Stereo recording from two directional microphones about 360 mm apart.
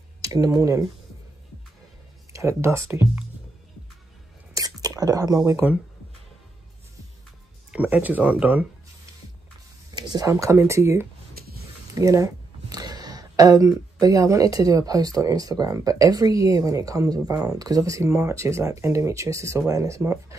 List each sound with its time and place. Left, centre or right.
0.2 s speech: centre
2.3 s speech: centre
4.6 s speech: centre
7.7 s speech: centre
9.9 s speech: centre
11.4 s a sound: right
11.9 s speech: centre